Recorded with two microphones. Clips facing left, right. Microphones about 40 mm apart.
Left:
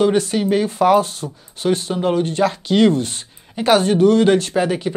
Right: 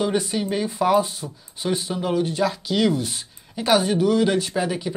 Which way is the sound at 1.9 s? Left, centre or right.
Left.